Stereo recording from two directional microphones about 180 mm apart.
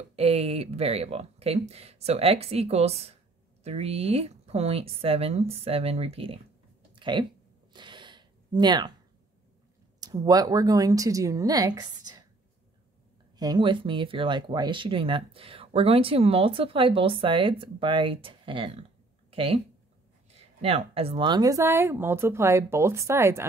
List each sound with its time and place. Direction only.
0.1 s speech: 35° right (ahead or behind)
7.0 s a sound: 25° right (ahead or behind)
9.9 s speech: 20° right (ahead or behind)
13.4 s speech: 25° right (ahead or behind)